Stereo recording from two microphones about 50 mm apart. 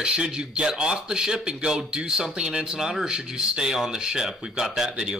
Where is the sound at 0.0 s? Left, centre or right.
Right.